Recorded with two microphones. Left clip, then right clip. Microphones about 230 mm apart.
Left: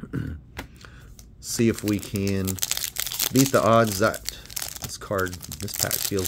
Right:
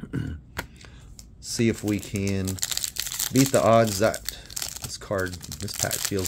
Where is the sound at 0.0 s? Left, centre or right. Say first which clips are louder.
Even; centre.